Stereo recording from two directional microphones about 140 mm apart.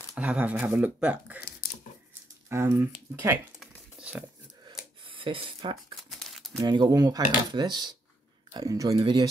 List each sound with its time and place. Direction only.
0.1 s speech: 10° right (ahead or behind)
2.5 s speech: 20° right (ahead or behind)
3.5 s a sound: 5° right (ahead or behind)
5.0 s speech: 40° right (ahead or behind)
6.0 s a sound: centre (ahead or behind)
6.6 s speech: 30° right (ahead or behind)